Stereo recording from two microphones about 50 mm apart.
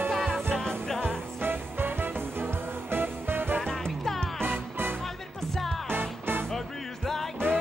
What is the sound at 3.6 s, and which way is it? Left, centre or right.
Music, centre.